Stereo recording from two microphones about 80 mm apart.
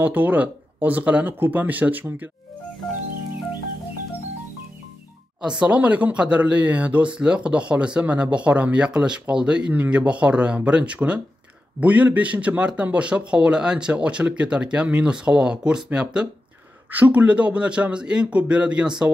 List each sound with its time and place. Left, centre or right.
0.0 s speech: right
5.6 s a man's voice: centre